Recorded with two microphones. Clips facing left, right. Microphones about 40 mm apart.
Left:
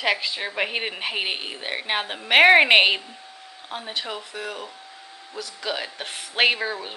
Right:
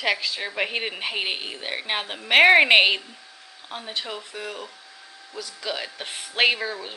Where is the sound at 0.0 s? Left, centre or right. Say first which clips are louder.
Left 1 dB; centre.